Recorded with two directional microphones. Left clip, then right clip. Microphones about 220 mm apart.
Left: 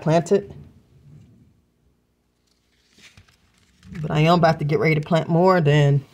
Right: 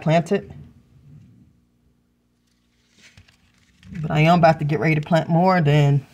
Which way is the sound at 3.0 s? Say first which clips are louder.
Left 1 dB; 55° left (ahead or behind).